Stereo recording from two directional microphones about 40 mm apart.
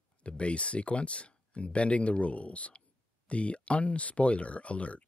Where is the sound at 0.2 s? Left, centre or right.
Left.